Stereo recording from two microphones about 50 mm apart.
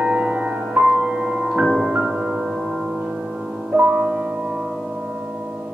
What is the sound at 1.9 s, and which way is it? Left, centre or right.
Music, right.